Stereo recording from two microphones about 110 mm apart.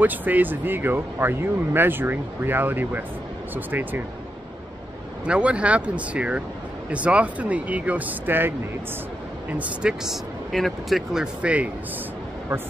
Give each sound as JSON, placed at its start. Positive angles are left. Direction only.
{"t": 0.0, "sound": "speech", "side_deg": -15}
{"t": 5.2, "sound": "speech", "side_deg": -10}
{"t": 11.4, "sound": "speech", "side_deg": -10}